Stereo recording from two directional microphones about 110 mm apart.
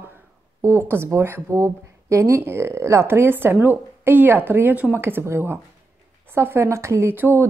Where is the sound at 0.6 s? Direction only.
25° right (ahead or behind).